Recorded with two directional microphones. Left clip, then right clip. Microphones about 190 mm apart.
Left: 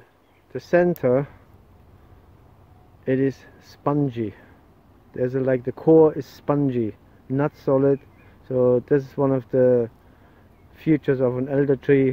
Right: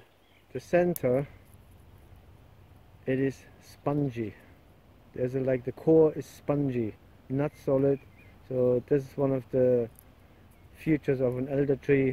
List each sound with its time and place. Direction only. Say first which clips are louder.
0.5 s speech: left 7 dB; 20° left (ahead or behind)
3.1 s speech: left 7 dB; 20° left (ahead or behind)